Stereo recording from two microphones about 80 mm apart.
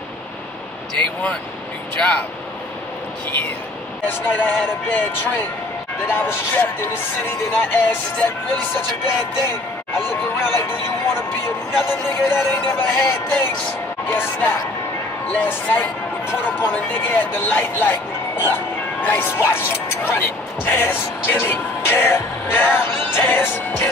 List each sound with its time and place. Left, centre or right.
2.0 s speech: centre
3.3 s speech: left
10.0 s a sound: left
11.9 s speech: left